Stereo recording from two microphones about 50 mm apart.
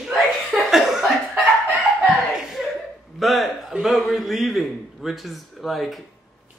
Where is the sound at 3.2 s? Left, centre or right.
Centre.